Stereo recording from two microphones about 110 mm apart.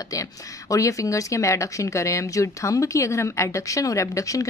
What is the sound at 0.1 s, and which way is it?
Speech, 30° left (ahead or behind).